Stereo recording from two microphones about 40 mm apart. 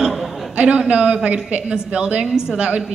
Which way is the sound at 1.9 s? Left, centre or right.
Right.